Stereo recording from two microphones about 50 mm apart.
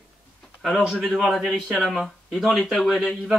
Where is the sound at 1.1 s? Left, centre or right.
Centre.